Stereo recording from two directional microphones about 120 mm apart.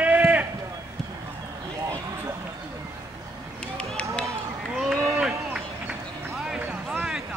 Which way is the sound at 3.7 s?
10° left (ahead or behind).